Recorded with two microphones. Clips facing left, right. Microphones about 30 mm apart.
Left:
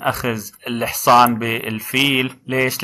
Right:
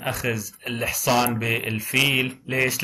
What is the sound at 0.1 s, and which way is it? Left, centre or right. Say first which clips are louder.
A man's voice: left 4 dB; left.